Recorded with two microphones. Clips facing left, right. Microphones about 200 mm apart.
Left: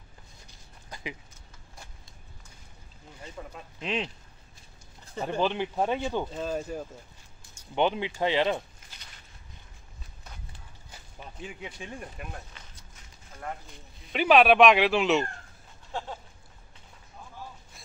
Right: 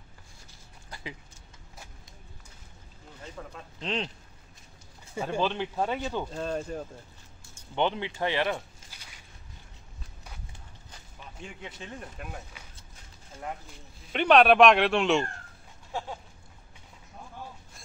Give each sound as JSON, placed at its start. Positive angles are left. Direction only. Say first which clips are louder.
{"t": 0.8, "sound": "a sound", "louder": "left 2 dB", "side_deg": 20}
{"t": 3.2, "sound": "speech", "louder": "even", "side_deg": 10}
{"t": 5.1, "sound": "speech", "louder": "even", "side_deg": -10}
{"t": 5.4, "sound": "speech", "louder": "left 2 dB", "side_deg": 15}
{"t": 6.2, "sound": "speech", "louder": "even", "side_deg": 5}
{"t": 7.5, "sound": "speech", "louder": "left 2 dB", "side_deg": 15}
{"t": 8.9, "sound": "a sound", "louder": "even", "side_deg": -10}
{"t": 10.9, "sound": "speech", "louder": "left 3 dB", "side_deg": 5}
{"t": 12.6, "sound": "a sound", "louder": "right 1 dB", "side_deg": -10}
{"t": 14.1, "sound": "speech", "louder": "even", "side_deg": 5}
{"t": 15.9, "sound": "speech", "louder": "even", "side_deg": -10}